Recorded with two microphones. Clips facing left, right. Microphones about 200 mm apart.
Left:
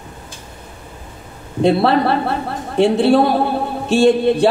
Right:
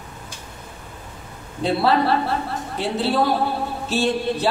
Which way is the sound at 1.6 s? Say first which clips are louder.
Left 5 dB; 60° left (ahead or behind).